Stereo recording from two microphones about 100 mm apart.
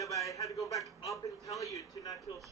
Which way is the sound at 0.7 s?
Centre (ahead or behind).